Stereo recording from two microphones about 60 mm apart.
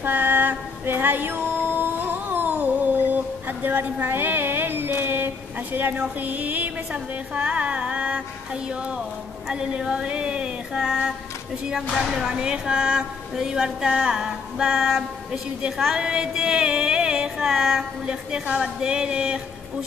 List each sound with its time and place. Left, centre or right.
0.0 s music: right
5.9 s a sound: right
8.6 s speech: centre